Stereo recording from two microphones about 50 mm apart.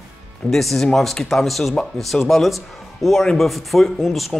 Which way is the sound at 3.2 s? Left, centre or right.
Centre.